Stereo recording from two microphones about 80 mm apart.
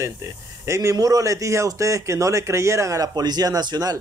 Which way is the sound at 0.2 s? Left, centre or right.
Right.